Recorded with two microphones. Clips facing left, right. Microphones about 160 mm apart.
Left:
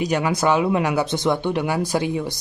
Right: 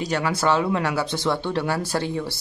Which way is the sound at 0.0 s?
15° left (ahead or behind).